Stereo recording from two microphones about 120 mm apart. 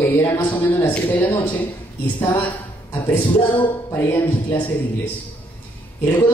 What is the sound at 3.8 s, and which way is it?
Speech, 20° left (ahead or behind).